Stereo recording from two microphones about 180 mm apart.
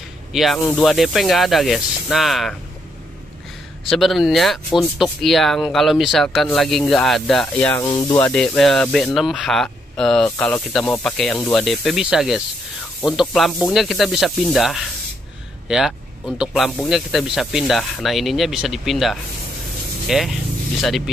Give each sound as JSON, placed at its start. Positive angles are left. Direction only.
{"t": 0.3, "sound": "speech", "side_deg": 0}
{"t": 3.8, "sound": "speech", "side_deg": 0}
{"t": 7.9, "sound": "speech", "side_deg": 15}
{"t": 8.3, "sound": "speech", "side_deg": 5}